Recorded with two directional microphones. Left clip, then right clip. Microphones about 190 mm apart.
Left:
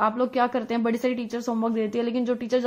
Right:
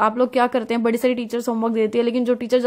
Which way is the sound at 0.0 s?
35° right (ahead or behind).